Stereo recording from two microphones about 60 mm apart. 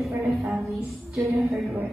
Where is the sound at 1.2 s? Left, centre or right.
Right.